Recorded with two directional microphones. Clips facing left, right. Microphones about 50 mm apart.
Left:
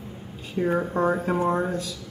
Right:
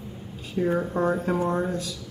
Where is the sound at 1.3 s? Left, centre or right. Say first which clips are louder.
Left 2 dB; left.